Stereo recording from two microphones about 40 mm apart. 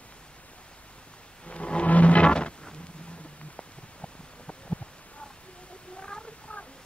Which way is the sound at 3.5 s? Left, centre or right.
Left.